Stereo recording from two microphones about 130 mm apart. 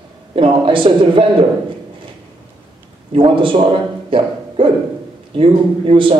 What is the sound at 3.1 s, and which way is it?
Speech, 40° right (ahead or behind).